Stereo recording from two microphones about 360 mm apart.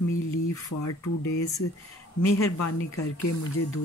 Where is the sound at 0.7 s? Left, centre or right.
Left.